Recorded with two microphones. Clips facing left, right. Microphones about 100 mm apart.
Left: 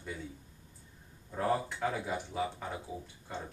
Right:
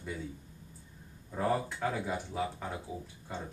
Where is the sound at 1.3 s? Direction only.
Centre (ahead or behind).